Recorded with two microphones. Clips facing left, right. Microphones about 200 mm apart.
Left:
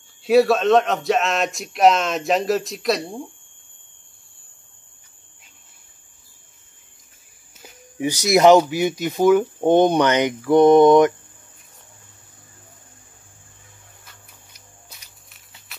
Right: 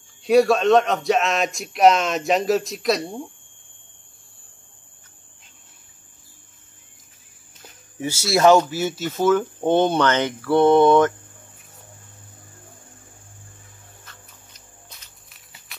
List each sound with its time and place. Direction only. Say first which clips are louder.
0.2 s speech: even; centre (ahead or behind)
7.6 s speech: left 4 dB; 15° left (ahead or behind)
14.0 s music: right 2 dB; 10° left (ahead or behind)